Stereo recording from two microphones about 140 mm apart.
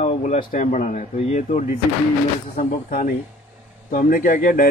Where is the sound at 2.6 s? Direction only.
70° left (ahead or behind).